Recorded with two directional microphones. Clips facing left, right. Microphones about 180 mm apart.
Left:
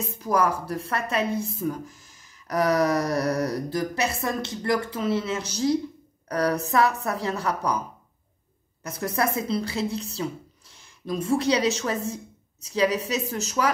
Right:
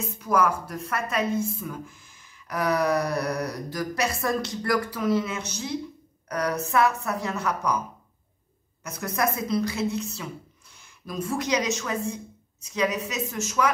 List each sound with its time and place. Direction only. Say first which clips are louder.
0.0 s a woman's voice: even; 35° left (ahead or behind)
6.2 s a sound: left 3 dB; 35° left (ahead or behind)
6.7 s a woman's voice: left 1 dB; 35° left (ahead or behind)
8.8 s a woman's voice: left 1 dB; 30° left (ahead or behind)